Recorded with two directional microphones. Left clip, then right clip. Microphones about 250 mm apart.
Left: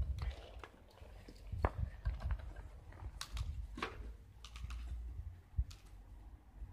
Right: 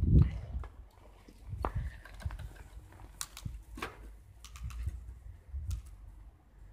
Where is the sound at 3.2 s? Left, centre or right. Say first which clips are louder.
Right 4 dB; right.